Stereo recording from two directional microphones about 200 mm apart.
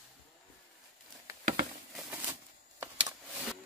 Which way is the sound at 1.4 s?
45° right (ahead or behind).